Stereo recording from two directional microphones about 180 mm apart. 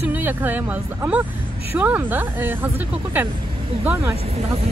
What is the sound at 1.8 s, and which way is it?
Speech, 10° right (ahead or behind).